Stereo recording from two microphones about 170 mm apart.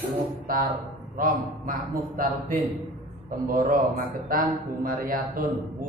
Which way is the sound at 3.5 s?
55° right (ahead or behind).